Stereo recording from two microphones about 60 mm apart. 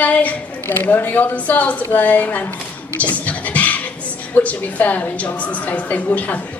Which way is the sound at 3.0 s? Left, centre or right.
Left.